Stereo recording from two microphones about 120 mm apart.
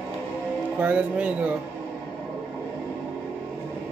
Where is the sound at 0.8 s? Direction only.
10° right (ahead or behind).